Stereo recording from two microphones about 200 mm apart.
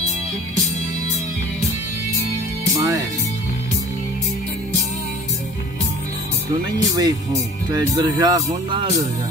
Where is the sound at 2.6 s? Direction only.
15° right (ahead or behind).